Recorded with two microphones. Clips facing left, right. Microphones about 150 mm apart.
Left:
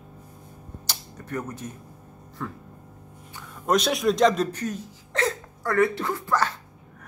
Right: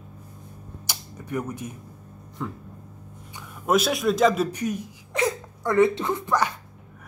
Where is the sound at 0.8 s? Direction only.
10° right (ahead or behind).